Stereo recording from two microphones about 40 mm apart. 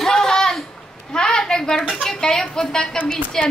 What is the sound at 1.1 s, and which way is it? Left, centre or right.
A child's voice, centre.